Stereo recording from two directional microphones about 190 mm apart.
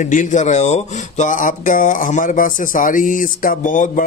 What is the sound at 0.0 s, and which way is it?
Speech, 40° left (ahead or behind).